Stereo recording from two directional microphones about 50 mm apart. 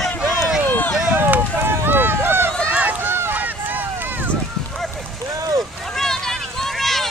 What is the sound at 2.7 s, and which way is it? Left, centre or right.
Run, right.